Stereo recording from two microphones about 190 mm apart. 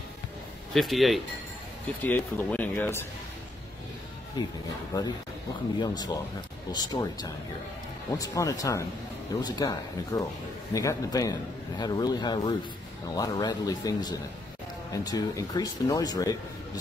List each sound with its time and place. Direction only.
0.7 s speech: centre (ahead or behind)
4.4 s speech: 20° left (ahead or behind)